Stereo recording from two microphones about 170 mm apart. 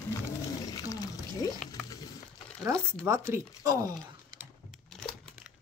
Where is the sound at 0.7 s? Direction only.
20° left (ahead or behind).